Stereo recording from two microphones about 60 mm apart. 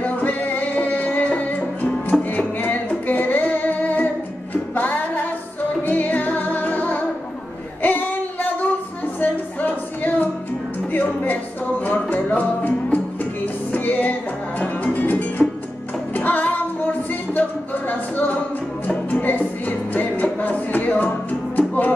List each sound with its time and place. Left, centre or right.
0.0 s music: left
7.8 s a sound: left
10.9 s music: left